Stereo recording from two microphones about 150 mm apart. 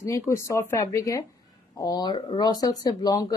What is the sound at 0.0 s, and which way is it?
Speech, 20° left (ahead or behind).